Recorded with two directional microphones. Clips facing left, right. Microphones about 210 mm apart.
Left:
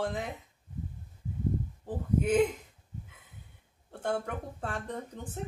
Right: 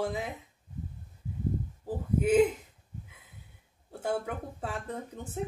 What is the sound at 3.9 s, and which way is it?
A woman's voice, 5° right (ahead or behind).